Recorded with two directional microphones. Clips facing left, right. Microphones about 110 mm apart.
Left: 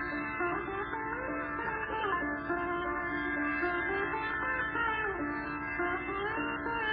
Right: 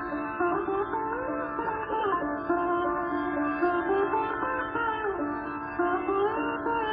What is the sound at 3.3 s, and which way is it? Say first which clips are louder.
Sitar: right 8 dB; 35° right (ahead or behind).